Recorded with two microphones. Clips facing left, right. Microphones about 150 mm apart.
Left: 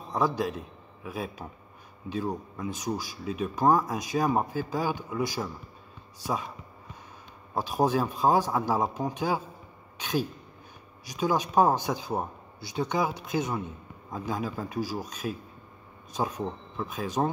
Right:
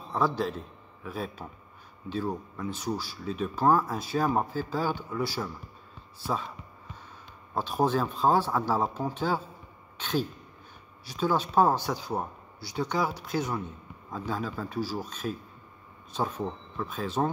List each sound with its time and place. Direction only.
0.1 s a man's voice: 10° left (ahead or behind)
7.5 s speech: 10° left (ahead or behind)